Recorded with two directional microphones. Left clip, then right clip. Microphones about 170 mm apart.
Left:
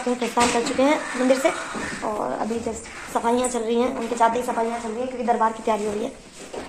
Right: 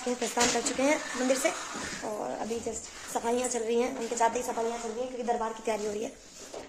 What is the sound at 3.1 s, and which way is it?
A woman's voice, 10° right (ahead or behind).